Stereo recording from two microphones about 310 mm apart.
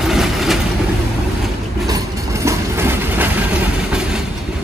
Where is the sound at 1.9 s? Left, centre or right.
Centre.